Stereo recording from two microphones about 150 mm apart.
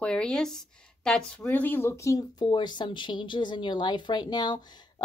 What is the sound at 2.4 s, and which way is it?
Speech, 30° left (ahead or behind).